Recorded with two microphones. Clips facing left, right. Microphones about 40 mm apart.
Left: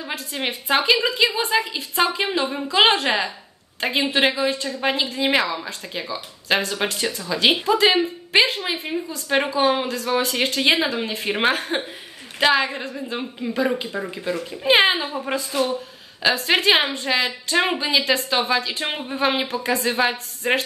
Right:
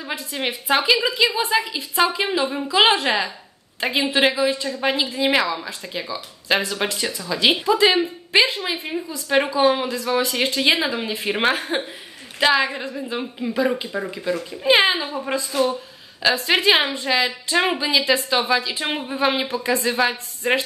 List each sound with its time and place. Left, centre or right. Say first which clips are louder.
0.3 s a woman's voice: right 1 dB; centre
3.1 s a woman's voice: even; left
4.0 s a woman's voice: right 1 dB; centre
16.4 s a woman's voice: even; centre